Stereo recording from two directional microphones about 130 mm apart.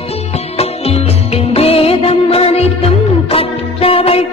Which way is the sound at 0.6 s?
50° left (ahead or behind).